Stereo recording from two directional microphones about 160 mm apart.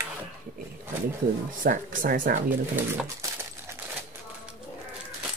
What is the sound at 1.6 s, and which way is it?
Speech, 60° right (ahead or behind).